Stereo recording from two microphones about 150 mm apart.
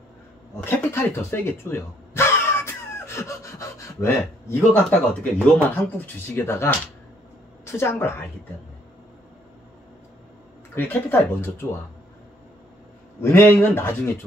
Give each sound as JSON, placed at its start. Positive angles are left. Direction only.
{"t": 0.7, "sound": "music", "side_deg": 15}
{"t": 4.5, "sound": "a woman's voice", "side_deg": 10}
{"t": 10.7, "sound": "speech", "side_deg": 15}
{"t": 13.2, "sound": "speech", "side_deg": 15}